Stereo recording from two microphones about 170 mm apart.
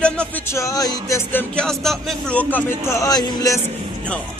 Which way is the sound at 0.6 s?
20° left (ahead or behind).